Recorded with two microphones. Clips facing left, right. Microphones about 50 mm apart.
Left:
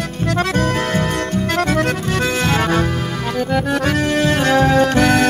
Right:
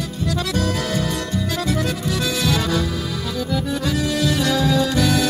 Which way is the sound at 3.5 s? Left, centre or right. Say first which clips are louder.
Left 5 dB; left.